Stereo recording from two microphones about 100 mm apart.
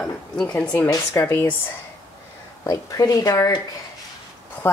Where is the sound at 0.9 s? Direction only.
30° left (ahead or behind).